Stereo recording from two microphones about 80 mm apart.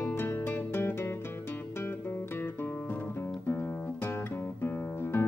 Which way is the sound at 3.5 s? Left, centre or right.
Left.